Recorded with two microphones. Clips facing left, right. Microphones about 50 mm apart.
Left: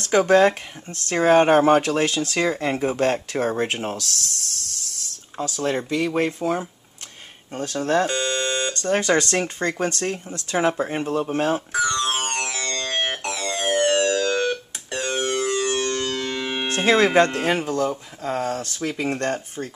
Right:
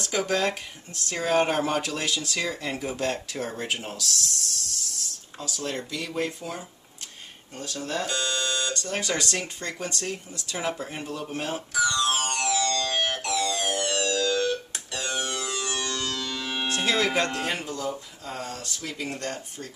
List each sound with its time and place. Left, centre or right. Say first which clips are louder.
0.0 s speech: left 10 dB; left
10.8 s music: left 10 dB; left
16.6 s speech: left 7 dB; left
17.6 s speech: left 8 dB; left